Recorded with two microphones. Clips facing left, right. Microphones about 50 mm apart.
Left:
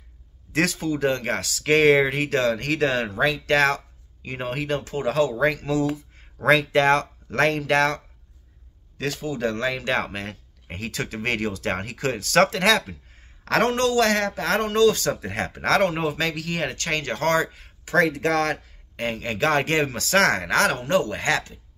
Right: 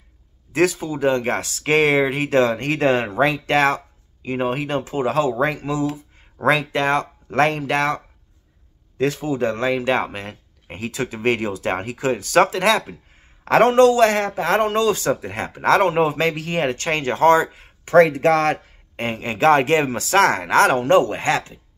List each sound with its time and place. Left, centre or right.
0.5 s speech: centre
2.2 s speech: right; by 7.1 s centre
7.2 s speech: centre
8.9 s speech: right; by 12.9 s centre
13.4 s speech: right
15.1 s speech: centre
16.0 s speech: right
17.8 s speech: right